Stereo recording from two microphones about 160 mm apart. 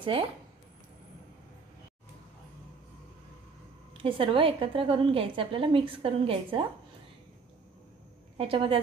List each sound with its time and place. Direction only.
0.0 s speech: 35° right (ahead or behind)
4.0 s a woman's voice: 35° right (ahead or behind)
8.4 s a woman's voice: 35° right (ahead or behind)